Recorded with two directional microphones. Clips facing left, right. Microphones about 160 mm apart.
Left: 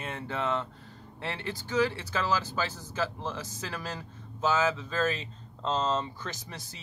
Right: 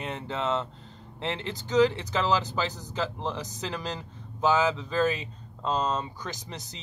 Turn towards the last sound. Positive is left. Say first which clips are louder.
# right 2 dB
turn(degrees=-20)  # may be behind; listen again after turning